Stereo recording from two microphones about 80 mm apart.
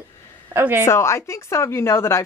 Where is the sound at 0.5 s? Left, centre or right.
Right.